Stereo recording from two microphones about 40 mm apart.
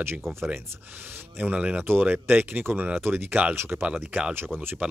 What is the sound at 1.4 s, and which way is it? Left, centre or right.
Speech, right.